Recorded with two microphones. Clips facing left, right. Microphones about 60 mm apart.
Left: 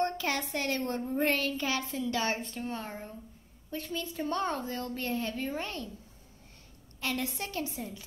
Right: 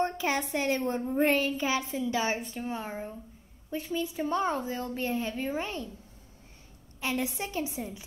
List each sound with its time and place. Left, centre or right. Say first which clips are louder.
0.0 s a child's voice: right 2 dB; centre
7.0 s a child's voice: right 3 dB; centre